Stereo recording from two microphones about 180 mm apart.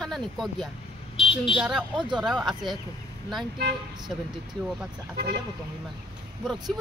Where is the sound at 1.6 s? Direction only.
5° right (ahead or behind).